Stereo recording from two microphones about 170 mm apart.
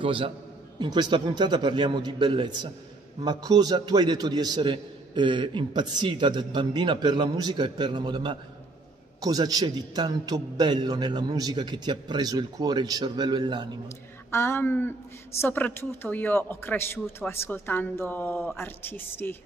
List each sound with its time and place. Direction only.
0.0 s a man's voice: 30° right (ahead or behind)
14.3 s speech: 15° left (ahead or behind)